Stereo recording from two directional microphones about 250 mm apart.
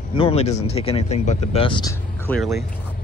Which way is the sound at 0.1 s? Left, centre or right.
Left.